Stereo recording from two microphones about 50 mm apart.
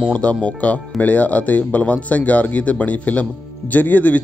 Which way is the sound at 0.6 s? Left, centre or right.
Left.